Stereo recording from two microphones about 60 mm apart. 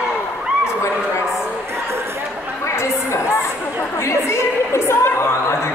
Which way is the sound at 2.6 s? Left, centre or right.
Left.